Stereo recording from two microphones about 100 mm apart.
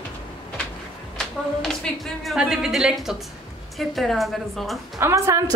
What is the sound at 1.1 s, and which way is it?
A woman's voice, 5° left (ahead or behind).